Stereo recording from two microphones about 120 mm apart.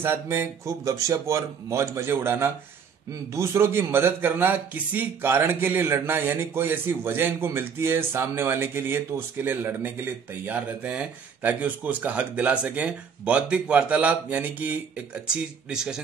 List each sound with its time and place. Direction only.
0.0 s a man's voice: 20° right (ahead or behind)